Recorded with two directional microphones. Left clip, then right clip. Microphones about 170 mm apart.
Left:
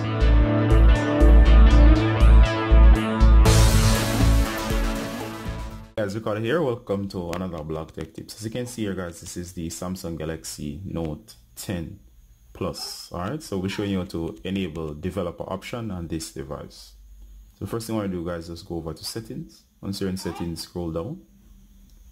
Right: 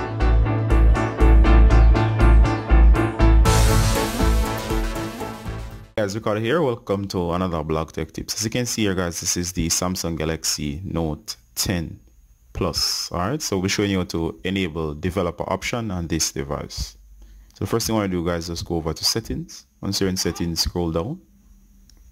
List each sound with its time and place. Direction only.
0.0 s music: centre (ahead or behind)
5.9 s speech: 25° right (ahead or behind)
7.1 s speech: 40° right (ahead or behind)